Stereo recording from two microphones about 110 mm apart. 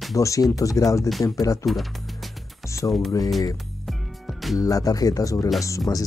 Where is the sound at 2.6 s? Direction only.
25° left (ahead or behind).